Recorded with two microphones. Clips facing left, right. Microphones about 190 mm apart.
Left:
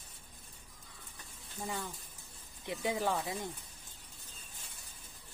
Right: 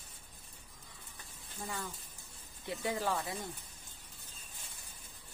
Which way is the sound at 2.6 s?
20° left (ahead or behind).